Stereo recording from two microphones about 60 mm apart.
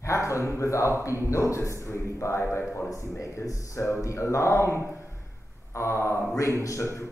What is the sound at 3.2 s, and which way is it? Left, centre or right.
Speech, left.